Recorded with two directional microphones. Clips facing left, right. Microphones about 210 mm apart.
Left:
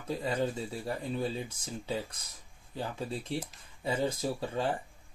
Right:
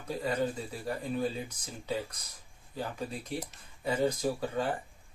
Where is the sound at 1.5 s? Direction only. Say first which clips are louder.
Even; 30° left (ahead or behind).